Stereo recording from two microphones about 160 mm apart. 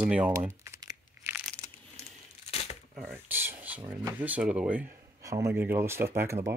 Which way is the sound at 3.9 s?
10° right (ahead or behind).